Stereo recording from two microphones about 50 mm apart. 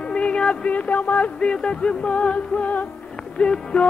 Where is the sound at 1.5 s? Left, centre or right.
Centre.